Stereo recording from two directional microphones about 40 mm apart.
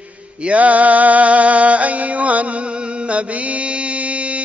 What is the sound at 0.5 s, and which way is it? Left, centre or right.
Music, right.